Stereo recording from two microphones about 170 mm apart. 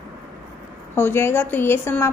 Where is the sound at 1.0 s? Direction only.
15° left (ahead or behind).